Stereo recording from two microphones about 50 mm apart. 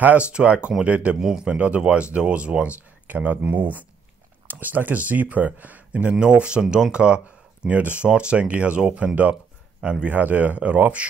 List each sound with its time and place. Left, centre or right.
0.3 s speech: right
1.2 s a man's voice: centre
1.5 s speech: right
6.1 s speech: centre
9.8 s speech: centre
10.0 s speech: right